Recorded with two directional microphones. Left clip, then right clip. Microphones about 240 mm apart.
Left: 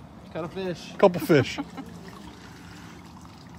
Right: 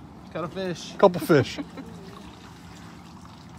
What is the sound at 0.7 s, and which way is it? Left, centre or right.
Speech, right.